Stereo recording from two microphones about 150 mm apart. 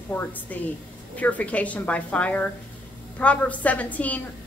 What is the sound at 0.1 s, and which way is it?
A woman's voice, 10° left (ahead or behind).